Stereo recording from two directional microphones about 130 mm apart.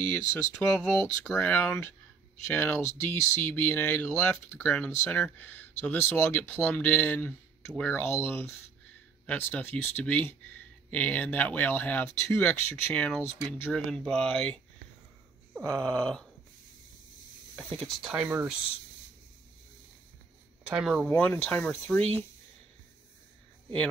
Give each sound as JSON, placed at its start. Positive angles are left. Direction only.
{"t": 0.3, "sound": "speech", "side_deg": 15}
{"t": 15.6, "sound": "speech", "side_deg": 10}
{"t": 17.7, "sound": "speech", "side_deg": 5}
{"t": 18.1, "sound": "speech", "side_deg": -15}
{"t": 20.6, "sound": "speech", "side_deg": -5}
{"t": 21.2, "sound": "speech", "side_deg": 10}